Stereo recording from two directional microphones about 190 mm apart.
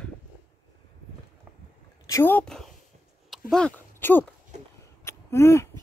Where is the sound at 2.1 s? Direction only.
10° left (ahead or behind).